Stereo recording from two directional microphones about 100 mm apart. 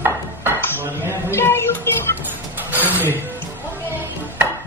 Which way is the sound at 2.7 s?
20° right (ahead or behind).